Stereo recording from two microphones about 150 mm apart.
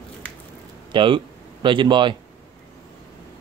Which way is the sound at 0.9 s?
35° right (ahead or behind).